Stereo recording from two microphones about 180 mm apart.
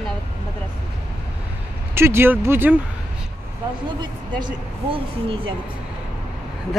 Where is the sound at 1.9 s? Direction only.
15° right (ahead or behind).